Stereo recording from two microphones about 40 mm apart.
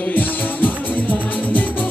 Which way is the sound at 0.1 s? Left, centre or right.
Left.